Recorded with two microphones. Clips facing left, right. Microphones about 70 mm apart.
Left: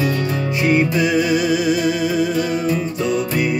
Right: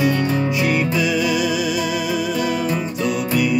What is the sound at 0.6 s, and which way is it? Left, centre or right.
Music, left.